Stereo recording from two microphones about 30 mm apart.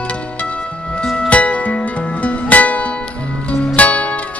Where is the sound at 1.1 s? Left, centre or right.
Left.